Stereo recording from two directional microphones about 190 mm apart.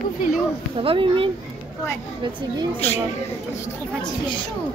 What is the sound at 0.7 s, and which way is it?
Speech, 25° right (ahead or behind).